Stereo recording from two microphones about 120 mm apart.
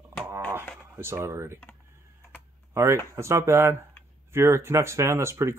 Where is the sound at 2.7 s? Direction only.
25° right (ahead or behind).